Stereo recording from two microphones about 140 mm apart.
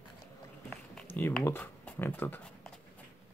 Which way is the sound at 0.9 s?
15° left (ahead or behind).